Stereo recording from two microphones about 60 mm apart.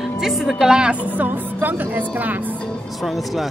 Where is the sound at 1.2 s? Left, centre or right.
Right.